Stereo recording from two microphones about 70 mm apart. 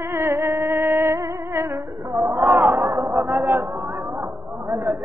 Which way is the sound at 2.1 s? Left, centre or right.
Right.